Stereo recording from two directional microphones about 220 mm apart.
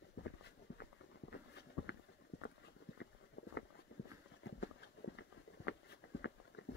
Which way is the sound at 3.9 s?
50° left (ahead or behind).